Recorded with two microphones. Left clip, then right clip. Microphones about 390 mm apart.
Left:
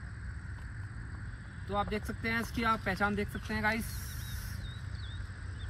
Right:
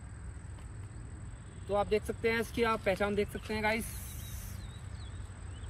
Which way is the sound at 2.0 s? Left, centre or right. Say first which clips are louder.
Right 3 dB; centre.